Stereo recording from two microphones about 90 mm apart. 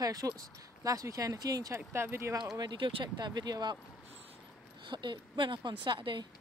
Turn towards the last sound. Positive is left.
turn(degrees=-60)  # may be behind; listen again after turning